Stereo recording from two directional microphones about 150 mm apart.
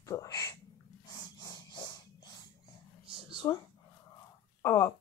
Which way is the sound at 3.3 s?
30° left (ahead or behind).